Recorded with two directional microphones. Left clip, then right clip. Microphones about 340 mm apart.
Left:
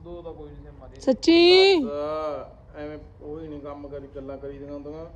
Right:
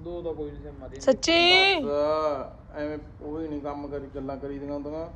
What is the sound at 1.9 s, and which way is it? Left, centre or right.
Speech, centre.